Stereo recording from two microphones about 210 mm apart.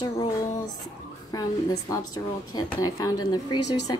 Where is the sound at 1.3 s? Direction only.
15° left (ahead or behind).